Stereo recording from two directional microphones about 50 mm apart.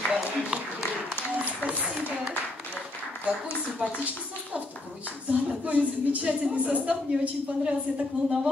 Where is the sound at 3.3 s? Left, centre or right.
Right.